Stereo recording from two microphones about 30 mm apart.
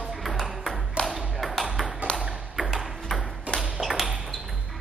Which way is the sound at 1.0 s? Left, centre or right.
Left.